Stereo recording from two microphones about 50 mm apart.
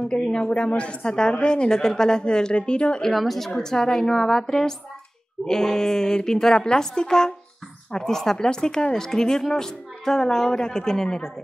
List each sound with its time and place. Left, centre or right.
0.1 s speech: centre
3.0 s speech: centre